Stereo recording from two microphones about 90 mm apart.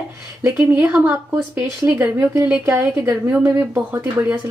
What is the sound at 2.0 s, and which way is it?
Speech, 20° right (ahead or behind).